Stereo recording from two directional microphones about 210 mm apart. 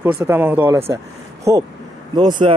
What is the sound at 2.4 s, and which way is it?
Speech, 30° right (ahead or behind).